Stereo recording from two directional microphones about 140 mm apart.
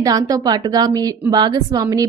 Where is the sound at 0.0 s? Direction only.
25° right (ahead or behind).